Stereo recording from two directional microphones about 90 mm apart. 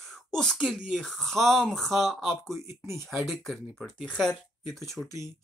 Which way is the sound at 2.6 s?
30° right (ahead or behind).